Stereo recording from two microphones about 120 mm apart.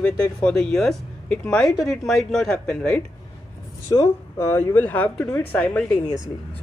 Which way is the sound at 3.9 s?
30° left (ahead or behind).